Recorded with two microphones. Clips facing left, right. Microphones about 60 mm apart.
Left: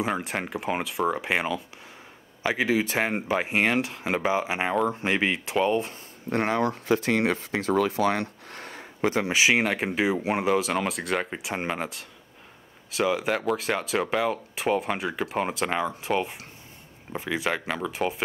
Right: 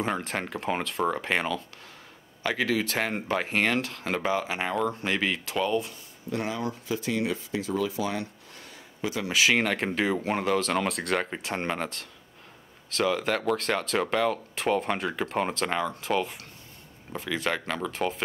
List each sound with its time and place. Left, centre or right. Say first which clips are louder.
0.0 s speech: left 1 dB; centre; by 5.9 s left
6.3 s speech: left 6 dB; left
9.2 s speech: even; left